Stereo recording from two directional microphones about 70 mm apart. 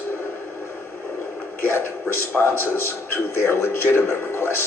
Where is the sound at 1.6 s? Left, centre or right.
Left.